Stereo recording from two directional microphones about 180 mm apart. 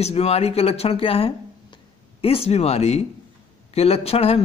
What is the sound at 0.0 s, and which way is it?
A man's voice, 35° left (ahead or behind).